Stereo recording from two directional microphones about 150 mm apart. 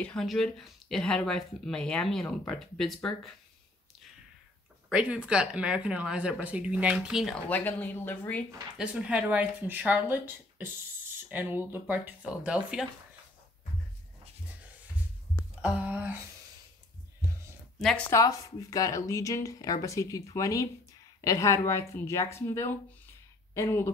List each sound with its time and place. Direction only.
0.0 s speech: 5° left (ahead or behind)
4.9 s speech: 5° right (ahead or behind)
7.4 s speech: 10° left (ahead or behind)
8.7 s speech: 5° right (ahead or behind)
15.6 s speech: 10° right (ahead or behind)
17.7 s speech: 5° left (ahead or behind)
18.1 s speech: 20° left (ahead or behind)